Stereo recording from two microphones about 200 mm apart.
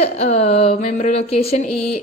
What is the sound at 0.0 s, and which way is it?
A woman's voice, 30° left (ahead or behind).